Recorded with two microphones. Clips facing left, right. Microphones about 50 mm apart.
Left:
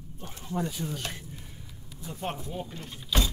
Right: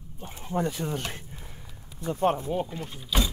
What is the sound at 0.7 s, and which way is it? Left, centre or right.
Speech, right.